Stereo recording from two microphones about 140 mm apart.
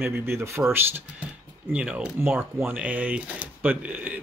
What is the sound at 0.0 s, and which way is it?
Speech, 15° right (ahead or behind).